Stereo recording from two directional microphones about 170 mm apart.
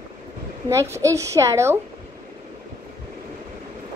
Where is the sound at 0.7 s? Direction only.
15° right (ahead or behind).